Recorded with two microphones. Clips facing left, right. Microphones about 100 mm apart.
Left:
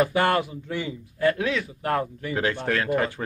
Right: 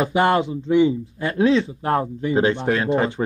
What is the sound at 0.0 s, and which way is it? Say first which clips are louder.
A man's voice: right 3 dB; 20° right (ahead or behind).